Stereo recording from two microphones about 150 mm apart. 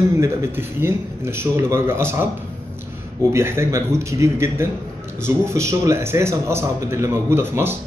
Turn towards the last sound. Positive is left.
turn(degrees=-15)  # may be behind; listen again after turning